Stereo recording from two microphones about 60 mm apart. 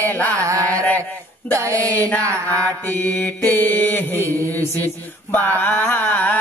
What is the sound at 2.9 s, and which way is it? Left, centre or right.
Chant, left.